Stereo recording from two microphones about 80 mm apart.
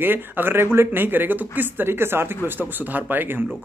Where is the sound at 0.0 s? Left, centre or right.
Right.